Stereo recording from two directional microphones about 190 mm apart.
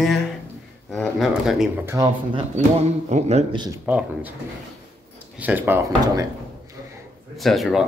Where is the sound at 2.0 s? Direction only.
20° right (ahead or behind).